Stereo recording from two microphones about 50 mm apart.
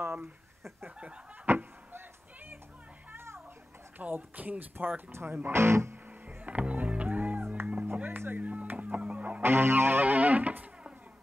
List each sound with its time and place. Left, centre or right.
0.0 s speech: right
0.8 s a sound: right
4.0 s speech: right
5.1 s music: right
5.6 s speech: right
6.2 s music: right
8.4 s music: right
9.4 s music: right
10.0 s speech: right